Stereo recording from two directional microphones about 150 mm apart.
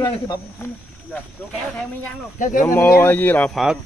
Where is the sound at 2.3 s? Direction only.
55° left (ahead or behind).